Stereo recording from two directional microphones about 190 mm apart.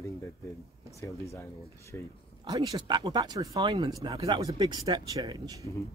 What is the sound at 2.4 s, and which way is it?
Speech, 20° right (ahead or behind).